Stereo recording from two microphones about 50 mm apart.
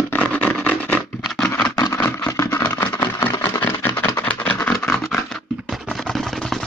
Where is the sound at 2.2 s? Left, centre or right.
Left.